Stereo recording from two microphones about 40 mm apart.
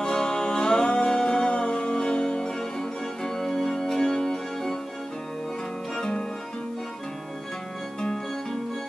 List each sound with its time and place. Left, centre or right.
0.0 s music: centre
8.0 s music: centre